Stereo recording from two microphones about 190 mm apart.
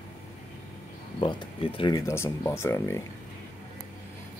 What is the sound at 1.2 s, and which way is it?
Speech, 25° left (ahead or behind).